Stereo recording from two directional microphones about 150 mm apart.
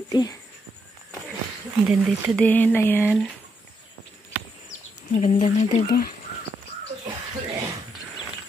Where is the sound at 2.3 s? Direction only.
10° left (ahead or behind).